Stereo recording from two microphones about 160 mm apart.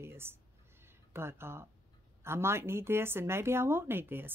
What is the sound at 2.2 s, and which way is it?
A woman's voice, 15° right (ahead or behind).